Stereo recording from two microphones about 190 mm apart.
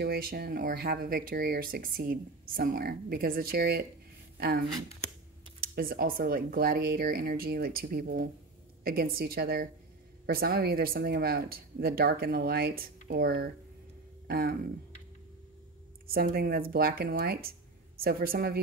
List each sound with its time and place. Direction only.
0.0 s speech: 55° right (ahead or behind)
14.2 s a sound: 55° right (ahead or behind)
16.1 s speech: 55° right (ahead or behind)